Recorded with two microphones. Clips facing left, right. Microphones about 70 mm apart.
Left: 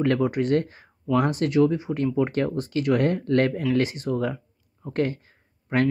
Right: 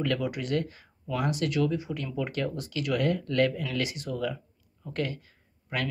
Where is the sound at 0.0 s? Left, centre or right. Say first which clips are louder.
Left 7 dB; left.